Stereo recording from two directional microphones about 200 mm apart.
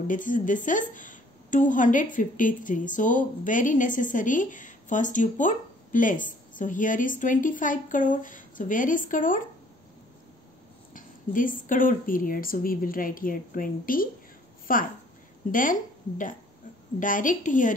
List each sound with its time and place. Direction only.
0.1 s a woman's voice: 40° left (ahead or behind)
10.9 s a woman's voice: 40° left (ahead or behind)